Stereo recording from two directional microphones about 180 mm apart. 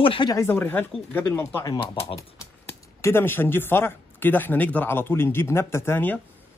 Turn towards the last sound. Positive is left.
turn(degrees=10)  # may be behind; listen again after turning